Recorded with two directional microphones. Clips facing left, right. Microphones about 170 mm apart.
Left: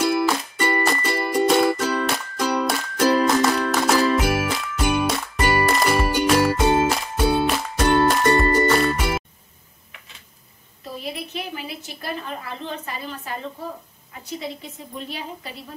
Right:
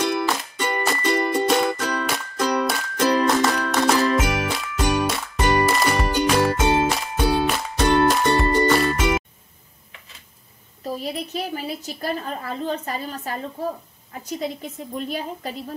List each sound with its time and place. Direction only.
0.0 s music: 5° left (ahead or behind)
11.0 s a sound: 40° right (ahead or behind)
12.6 s a woman's voice: 40° right (ahead or behind)